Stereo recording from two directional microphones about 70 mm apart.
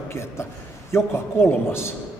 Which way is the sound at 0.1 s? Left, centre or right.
Left.